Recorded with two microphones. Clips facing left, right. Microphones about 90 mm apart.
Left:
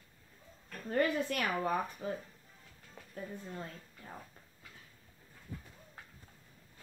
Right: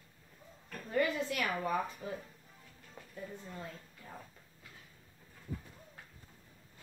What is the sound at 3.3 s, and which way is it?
Speech, 5° left (ahead or behind).